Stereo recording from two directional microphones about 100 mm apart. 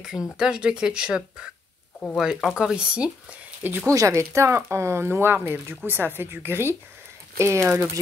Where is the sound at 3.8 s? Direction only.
30° right (ahead or behind).